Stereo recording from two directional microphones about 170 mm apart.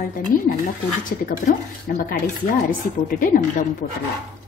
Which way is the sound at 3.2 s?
50° left (ahead or behind).